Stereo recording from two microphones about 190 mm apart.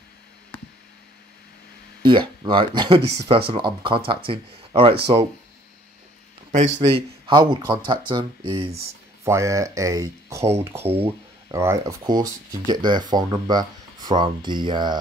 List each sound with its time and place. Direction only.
2.0 s speech: 25° right (ahead or behind)
6.5 s speech: 40° right (ahead or behind)
7.2 s speech: 25° right (ahead or behind)
9.2 s speech: 15° right (ahead or behind)